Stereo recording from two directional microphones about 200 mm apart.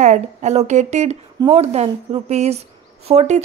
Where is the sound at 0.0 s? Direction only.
35° right (ahead or behind).